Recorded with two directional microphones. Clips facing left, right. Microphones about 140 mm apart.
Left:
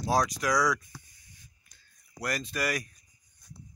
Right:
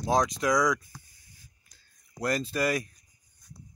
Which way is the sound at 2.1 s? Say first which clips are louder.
Right 4 dB; 25° right (ahead or behind).